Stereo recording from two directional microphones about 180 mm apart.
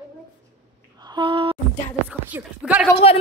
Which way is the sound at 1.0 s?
25° right (ahead or behind).